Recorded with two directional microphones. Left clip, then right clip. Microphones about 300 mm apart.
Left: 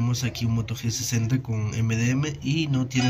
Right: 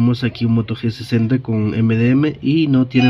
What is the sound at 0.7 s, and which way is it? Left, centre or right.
Speech, centre.